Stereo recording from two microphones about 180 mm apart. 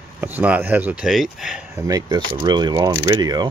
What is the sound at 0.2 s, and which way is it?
Speech, 10° right (ahead or behind).